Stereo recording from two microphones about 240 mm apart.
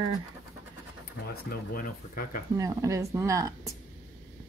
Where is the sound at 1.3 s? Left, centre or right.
Left.